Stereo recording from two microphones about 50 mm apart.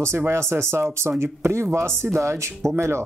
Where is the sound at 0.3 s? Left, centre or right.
Right.